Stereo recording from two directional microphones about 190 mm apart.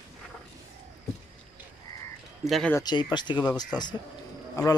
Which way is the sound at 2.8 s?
20° left (ahead or behind).